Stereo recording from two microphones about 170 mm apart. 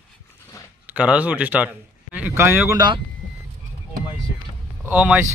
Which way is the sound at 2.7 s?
25° right (ahead or behind).